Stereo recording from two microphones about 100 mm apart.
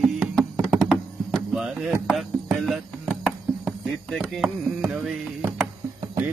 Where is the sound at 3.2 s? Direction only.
Centre (ahead or behind).